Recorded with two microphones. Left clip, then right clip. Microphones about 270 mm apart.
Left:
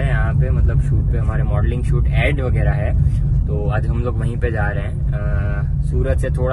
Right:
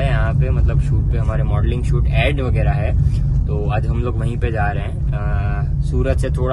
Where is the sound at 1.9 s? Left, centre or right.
Centre.